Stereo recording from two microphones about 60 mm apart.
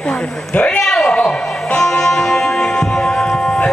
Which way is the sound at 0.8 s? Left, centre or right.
Centre.